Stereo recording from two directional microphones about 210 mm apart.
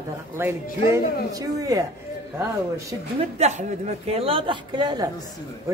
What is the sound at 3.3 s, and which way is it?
A woman's voice, 30° right (ahead or behind).